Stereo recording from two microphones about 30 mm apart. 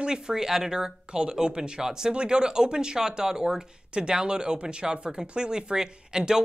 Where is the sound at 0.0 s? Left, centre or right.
Right.